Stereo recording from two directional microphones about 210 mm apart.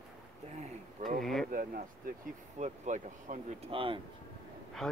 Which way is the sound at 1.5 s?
40° right (ahead or behind).